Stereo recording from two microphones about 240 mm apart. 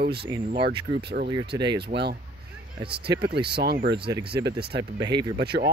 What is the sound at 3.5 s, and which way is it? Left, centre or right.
Speech, right.